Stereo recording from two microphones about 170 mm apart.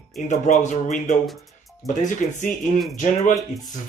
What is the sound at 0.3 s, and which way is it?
Speech, 45° left (ahead or behind).